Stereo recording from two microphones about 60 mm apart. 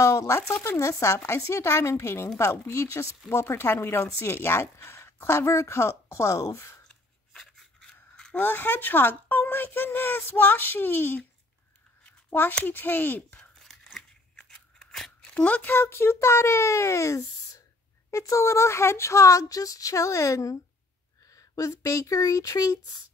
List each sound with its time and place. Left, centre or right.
0.3 s speech: left
7.3 s a sound: centre
8.4 s speech: left
12.0 s a sound: left
12.6 s speech: left
13.4 s a sound: centre
14.3 s scissors: centre
15.3 s speech: left
15.7 s speech: left